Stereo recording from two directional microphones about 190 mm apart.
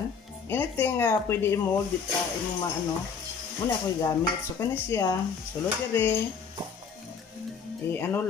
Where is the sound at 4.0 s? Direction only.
15° left (ahead or behind).